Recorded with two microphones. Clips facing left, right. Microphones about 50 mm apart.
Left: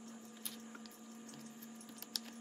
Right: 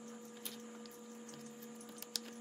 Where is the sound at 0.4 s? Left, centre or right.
Centre.